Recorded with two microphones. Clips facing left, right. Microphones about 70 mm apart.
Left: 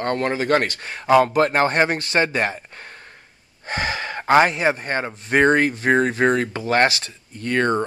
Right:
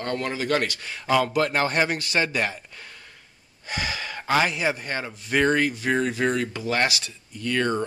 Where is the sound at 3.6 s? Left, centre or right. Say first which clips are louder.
Left 5 dB; left.